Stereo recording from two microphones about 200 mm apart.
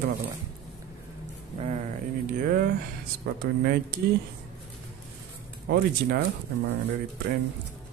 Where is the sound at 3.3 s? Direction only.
55° right (ahead or behind).